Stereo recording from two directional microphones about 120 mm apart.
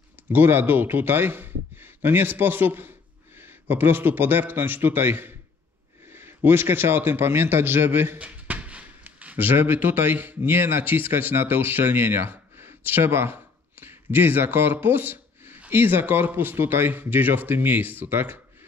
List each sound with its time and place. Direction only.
0.3 s a man's voice: 15° right (ahead or behind)